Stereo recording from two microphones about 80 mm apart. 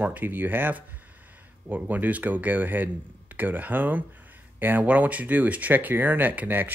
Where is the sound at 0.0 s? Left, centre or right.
Right.